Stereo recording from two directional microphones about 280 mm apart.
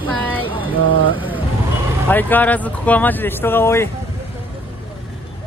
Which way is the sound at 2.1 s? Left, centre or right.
Centre.